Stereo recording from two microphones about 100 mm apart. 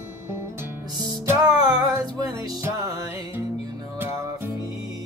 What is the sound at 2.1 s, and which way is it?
Music, 40° right (ahead or behind).